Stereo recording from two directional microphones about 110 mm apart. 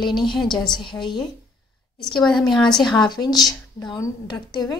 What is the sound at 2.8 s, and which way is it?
A woman's voice, 40° left (ahead or behind).